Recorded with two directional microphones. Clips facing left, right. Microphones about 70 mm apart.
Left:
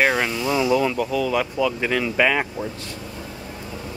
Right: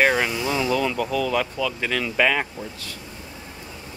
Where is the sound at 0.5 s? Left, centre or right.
Centre.